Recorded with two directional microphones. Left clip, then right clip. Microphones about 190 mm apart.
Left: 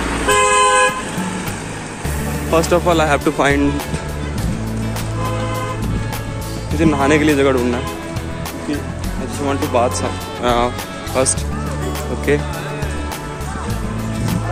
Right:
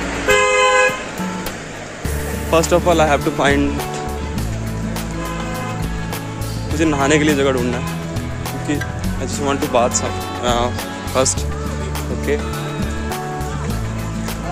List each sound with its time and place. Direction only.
0.2 s vehicle: 60° left (ahead or behind)
2.9 s speech: 10° right (ahead or behind)
6.8 s speech: 25° right (ahead or behind)
9.8 s speech: 20° right (ahead or behind)
11.2 s speech: 30° right (ahead or behind)
12.3 s speech: 15° right (ahead or behind)